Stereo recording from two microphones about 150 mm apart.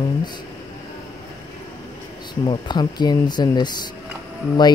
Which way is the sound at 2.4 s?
30° left (ahead or behind).